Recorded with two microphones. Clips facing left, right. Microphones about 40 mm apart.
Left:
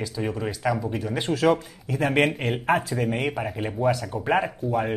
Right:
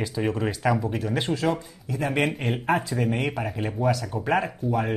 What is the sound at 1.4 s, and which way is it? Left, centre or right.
Speech, centre.